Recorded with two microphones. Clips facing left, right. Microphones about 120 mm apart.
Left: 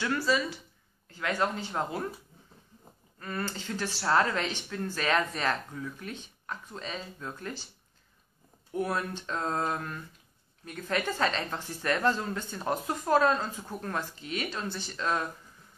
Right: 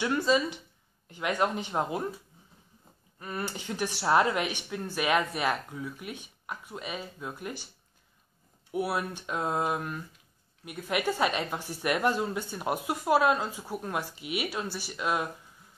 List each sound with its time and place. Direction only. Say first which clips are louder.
0.0 s speech: right 2 dB; 20° right (ahead or behind)
3.2 s a woman's voice: even; 15° right (ahead or behind)
8.7 s a woman's voice: right 1 dB; 10° right (ahead or behind)